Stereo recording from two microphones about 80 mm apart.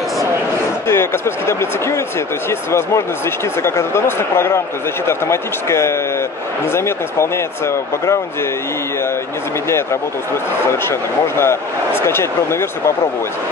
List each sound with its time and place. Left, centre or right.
0.8 s speech: left
3.6 s speech: left
10.7 s speech: left